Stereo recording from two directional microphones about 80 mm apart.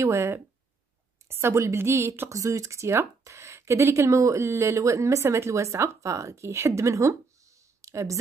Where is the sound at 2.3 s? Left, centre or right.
Right.